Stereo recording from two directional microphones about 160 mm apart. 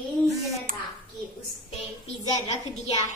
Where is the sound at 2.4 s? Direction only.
45° left (ahead or behind).